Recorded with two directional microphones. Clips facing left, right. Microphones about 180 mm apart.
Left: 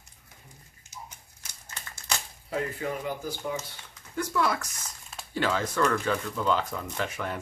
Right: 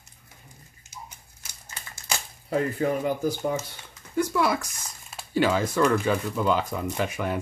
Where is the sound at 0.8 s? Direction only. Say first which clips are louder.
Right 1 dB; 10° right (ahead or behind).